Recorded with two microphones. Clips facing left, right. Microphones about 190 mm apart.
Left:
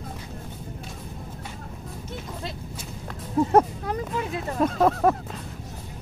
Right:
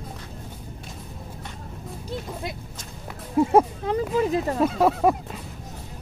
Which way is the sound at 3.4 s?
10° right (ahead or behind).